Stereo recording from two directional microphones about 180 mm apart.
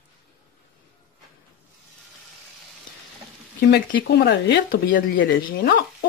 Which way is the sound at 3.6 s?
65° left (ahead or behind).